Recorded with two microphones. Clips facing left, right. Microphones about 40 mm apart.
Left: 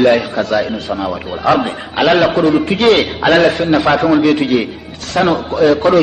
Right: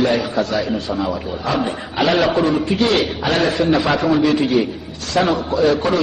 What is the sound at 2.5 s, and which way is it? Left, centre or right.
A man's voice, left.